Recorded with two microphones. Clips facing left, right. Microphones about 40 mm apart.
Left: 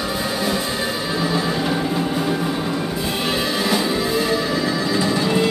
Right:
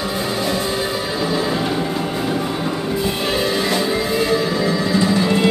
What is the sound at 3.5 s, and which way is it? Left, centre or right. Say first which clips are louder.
Music: right 1 dB; centre.